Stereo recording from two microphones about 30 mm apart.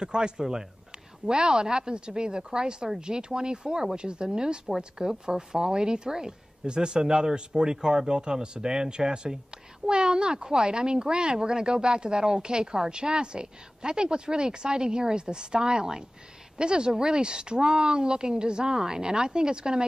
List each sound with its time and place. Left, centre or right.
0.0 s a woman's voice: right